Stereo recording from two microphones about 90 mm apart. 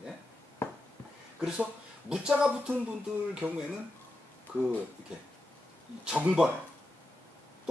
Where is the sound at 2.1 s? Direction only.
10° right (ahead or behind).